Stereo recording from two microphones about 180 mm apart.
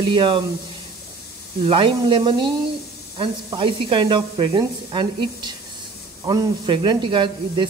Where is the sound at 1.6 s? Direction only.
30° right (ahead or behind).